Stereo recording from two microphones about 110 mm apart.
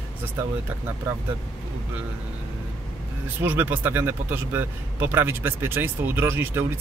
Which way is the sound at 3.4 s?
15° right (ahead or behind).